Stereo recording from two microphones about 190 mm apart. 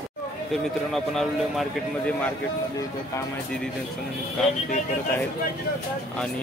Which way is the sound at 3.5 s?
5° left (ahead or behind).